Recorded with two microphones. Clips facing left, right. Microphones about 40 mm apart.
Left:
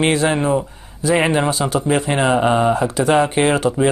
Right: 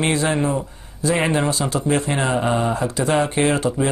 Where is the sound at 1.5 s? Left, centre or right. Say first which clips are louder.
Left 3 dB; left.